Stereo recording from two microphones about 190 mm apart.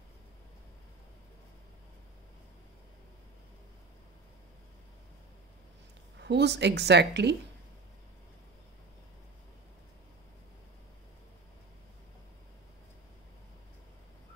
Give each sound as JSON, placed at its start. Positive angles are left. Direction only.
{"t": 6.1, "sound": "a woman's voice", "side_deg": -65}